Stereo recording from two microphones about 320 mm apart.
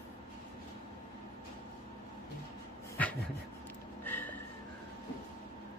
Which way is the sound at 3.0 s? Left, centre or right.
Centre.